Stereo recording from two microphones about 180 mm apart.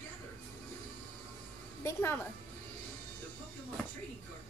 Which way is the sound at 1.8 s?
15° left (ahead or behind).